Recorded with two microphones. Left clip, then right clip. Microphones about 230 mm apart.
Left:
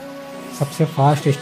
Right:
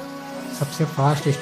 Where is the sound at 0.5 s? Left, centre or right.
Centre.